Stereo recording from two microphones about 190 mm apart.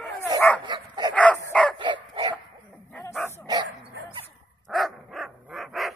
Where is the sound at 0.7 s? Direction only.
25° right (ahead or behind).